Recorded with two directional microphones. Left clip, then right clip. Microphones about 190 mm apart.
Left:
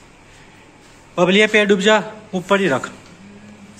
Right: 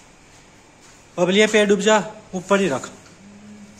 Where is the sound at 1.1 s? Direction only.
10° right (ahead or behind).